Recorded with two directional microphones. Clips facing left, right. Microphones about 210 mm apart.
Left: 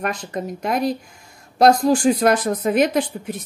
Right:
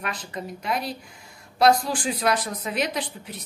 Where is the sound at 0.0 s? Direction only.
45° left (ahead or behind).